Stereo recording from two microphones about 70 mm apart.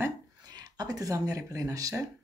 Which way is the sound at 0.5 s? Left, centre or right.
Right.